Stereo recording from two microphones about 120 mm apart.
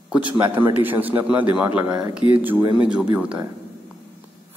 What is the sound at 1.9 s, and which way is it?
Speech, 30° right (ahead or behind).